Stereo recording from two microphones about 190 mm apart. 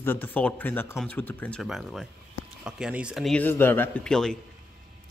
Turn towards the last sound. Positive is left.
turn(degrees=5)  # may be behind; listen again after turning